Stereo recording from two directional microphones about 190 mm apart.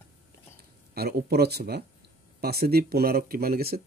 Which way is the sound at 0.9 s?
55° right (ahead or behind).